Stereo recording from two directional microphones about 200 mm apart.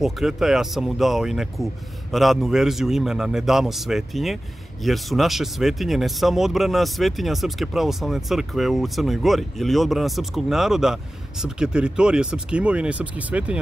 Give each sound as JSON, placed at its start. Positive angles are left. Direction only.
{"t": 0.0, "sound": "speech", "side_deg": 0}